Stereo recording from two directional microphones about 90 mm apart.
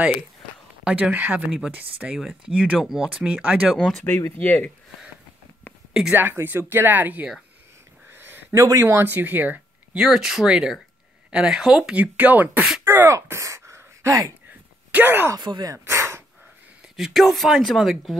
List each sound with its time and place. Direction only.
0.8 s speech: 15° right (ahead or behind)
2.0 s speech: 10° right (ahead or behind)
4.4 s speech: 20° left (ahead or behind)
6.1 s speech: 25° right (ahead or behind)
8.1 s a sound: 25° right (ahead or behind)
8.5 s speech: 35° right (ahead or behind)
8.9 s speech: 20° right (ahead or behind)
9.9 s speech: 5° right (ahead or behind)
12.8 s a sound: 25° right (ahead or behind)
14.9 s speech: 20° right (ahead or behind)
15.3 s speech: 50° right (ahead or behind)
15.8 s a sound: 30° right (ahead or behind)
16.9 s speech: centre (ahead or behind)